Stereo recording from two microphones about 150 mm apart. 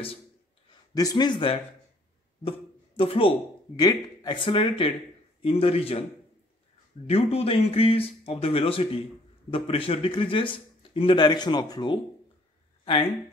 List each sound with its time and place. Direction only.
0.7 s speech: 25° left (ahead or behind)
3.0 s speech: 40° left (ahead or behind)
3.7 s speech: 25° left (ahead or behind); by 6.0 s 40° left (ahead or behind)
7.1 s speech: 40° left (ahead or behind)